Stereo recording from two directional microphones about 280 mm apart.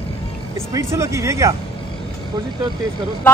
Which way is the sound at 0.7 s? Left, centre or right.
Centre.